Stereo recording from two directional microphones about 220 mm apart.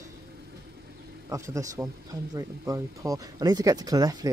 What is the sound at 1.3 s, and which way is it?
Speech, 15° right (ahead or behind).